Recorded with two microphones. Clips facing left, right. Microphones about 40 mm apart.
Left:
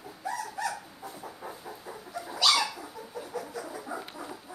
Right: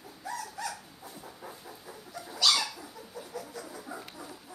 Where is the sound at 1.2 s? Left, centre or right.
Centre.